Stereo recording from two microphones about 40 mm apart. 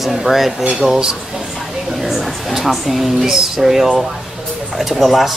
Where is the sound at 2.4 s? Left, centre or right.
Centre.